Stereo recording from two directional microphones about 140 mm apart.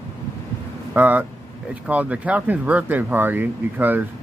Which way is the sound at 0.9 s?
10° right (ahead or behind).